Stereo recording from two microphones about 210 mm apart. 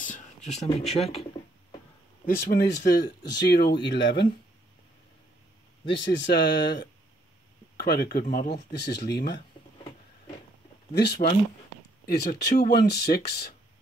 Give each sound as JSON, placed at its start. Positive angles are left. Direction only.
{"t": 0.0, "sound": "speech", "side_deg": 35}
{"t": 2.2, "sound": "speech", "side_deg": 50}
{"t": 5.9, "sound": "speech", "side_deg": 55}
{"t": 11.0, "sound": "speech", "side_deg": 50}